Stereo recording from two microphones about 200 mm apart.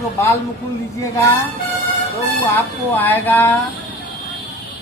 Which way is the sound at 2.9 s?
10° left (ahead or behind).